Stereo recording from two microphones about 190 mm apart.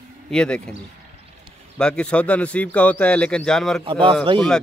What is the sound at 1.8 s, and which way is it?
A man's voice, 5° left (ahead or behind).